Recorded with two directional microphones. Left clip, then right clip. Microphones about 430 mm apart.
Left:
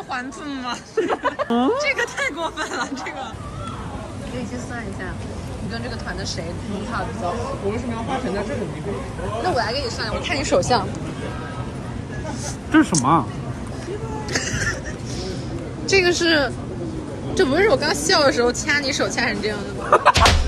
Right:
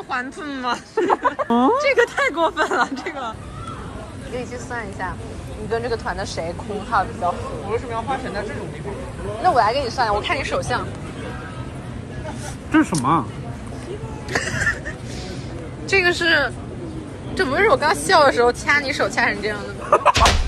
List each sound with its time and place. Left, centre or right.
0.1 s speech: centre
1.2 s speech: centre
1.8 s speech: centre
5.7 s speech: centre
7.7 s speech: centre
9.6 s speech: centre
12.7 s speech: centre
14.3 s a sound: centre
15.9 s speech: centre